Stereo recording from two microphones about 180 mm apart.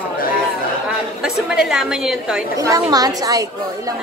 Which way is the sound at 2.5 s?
20° right (ahead or behind).